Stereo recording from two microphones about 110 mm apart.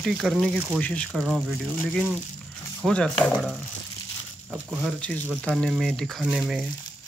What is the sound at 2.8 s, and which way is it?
Speech, 10° left (ahead or behind).